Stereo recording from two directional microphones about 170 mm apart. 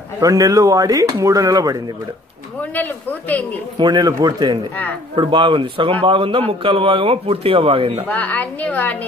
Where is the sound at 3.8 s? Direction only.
25° right (ahead or behind).